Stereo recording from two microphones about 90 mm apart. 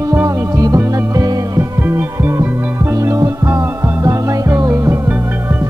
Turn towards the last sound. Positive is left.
turn(degrees=-35)  # may be behind; listen again after turning